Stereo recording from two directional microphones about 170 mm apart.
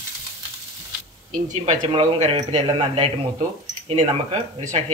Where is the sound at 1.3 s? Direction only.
45° right (ahead or behind).